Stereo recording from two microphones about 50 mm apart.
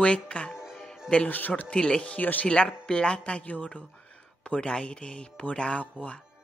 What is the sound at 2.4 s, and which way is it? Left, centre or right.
Speech, centre.